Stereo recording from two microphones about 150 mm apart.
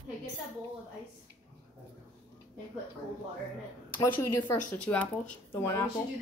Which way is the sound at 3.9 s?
30° left (ahead or behind).